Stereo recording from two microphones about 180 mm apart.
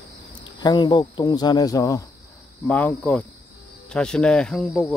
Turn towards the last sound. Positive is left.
turn(degrees=0)  # may be behind; listen again after turning